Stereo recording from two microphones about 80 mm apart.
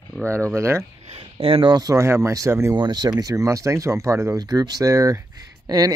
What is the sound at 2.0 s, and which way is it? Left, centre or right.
Speech, right.